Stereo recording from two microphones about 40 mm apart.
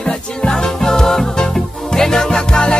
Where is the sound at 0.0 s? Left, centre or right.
Centre.